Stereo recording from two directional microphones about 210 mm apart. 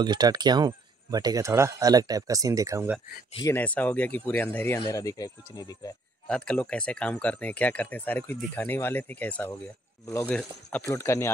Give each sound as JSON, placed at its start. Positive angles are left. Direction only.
{"t": 0.0, "sound": "speech", "side_deg": -20}
{"t": 3.3, "sound": "speech", "side_deg": 10}
{"t": 6.2, "sound": "speech", "side_deg": 5}